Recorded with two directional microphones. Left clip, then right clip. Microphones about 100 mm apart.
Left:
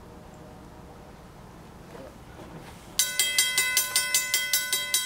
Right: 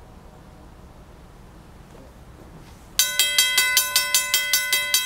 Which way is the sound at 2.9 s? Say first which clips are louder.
Right 6 dB; 15° right (ahead or behind).